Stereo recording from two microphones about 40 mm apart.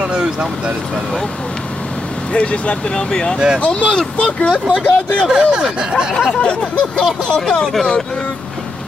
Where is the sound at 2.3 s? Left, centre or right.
Left.